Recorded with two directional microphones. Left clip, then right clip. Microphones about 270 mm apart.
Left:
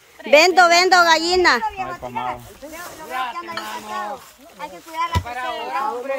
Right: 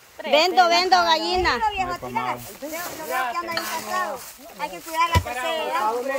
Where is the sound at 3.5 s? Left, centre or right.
Right.